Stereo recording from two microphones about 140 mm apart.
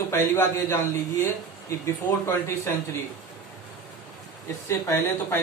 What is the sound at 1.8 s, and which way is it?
Speech, 15° left (ahead or behind).